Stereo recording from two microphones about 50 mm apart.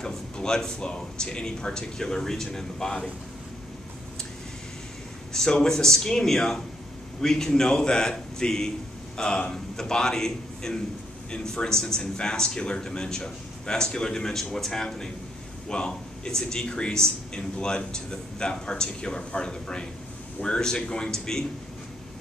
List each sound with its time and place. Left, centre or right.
0.0 s a man's voice: centre
5.3 s a man's voice: centre